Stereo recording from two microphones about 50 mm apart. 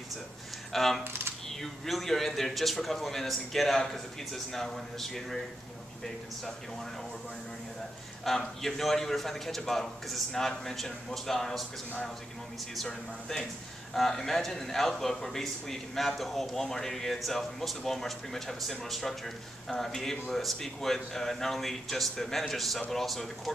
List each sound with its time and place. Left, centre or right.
0.7 s a man's voice: centre
8.2 s a man's voice: centre
12.7 s a man's voice: centre